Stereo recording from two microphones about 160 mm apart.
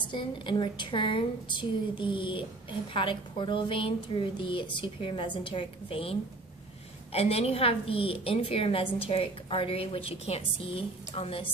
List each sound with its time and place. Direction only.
0.1 s a woman's voice: 30° left (ahead or behind)